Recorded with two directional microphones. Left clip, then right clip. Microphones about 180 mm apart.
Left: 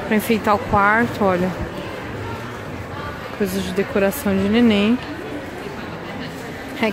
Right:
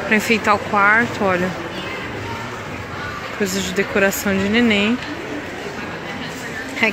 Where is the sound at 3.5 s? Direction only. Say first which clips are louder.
Right 2 dB; 10° left (ahead or behind).